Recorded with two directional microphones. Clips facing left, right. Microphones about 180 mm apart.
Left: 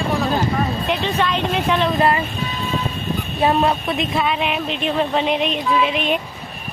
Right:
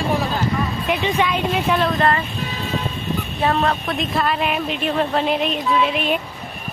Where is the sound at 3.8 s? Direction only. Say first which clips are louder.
Left 1 dB; centre (ahead or behind).